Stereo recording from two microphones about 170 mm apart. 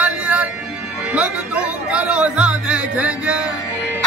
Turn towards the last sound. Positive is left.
turn(degrees=-5)  # may be behind; listen again after turning